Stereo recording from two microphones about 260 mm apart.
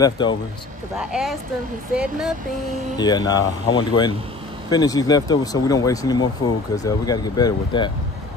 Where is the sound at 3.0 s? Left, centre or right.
Centre.